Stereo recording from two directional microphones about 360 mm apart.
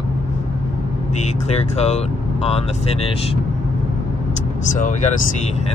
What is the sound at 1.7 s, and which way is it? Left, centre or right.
Speech, centre.